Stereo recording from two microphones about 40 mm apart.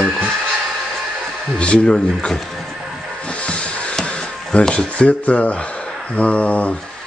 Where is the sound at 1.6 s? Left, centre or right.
Left.